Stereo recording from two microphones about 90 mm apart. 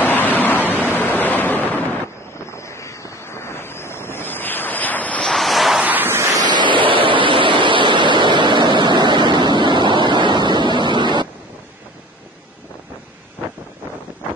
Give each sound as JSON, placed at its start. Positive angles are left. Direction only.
{"t": 0.0, "sound": "waves", "side_deg": 20}
{"t": 2.5, "sound": "wind noise", "side_deg": 30}
{"t": 5.3, "sound": "ocean", "side_deg": 0}
{"t": 5.8, "sound": "waves", "side_deg": -20}
{"t": 6.4, "sound": "waves", "side_deg": -60}
{"t": 6.9, "sound": "waves", "side_deg": -75}